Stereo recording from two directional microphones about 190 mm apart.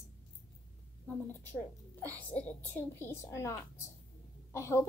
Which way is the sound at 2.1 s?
5° left (ahead or behind).